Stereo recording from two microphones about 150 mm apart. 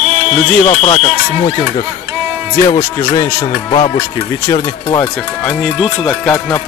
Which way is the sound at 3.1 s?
25° left (ahead or behind).